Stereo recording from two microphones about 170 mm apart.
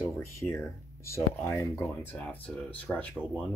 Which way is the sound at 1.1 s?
15° left (ahead or behind).